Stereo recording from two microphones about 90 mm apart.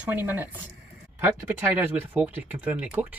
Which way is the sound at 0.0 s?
20° right (ahead or behind).